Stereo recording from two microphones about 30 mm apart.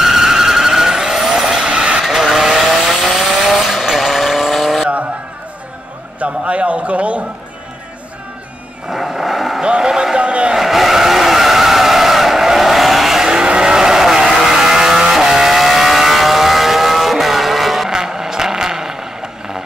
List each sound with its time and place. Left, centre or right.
0.0 s vehicle: centre
2.3 s vehicle: centre
2.9 s vehicle: centre
3.3 s vehicle: centre
6.1 s a sound: right
8.9 s vehicle: centre
9.6 s a sound: right
10.1 s vehicle: right
10.6 s skidding: centre
13.2 s vehicle: right
14.0 s vehicle: centre
17.8 s vehicle: centre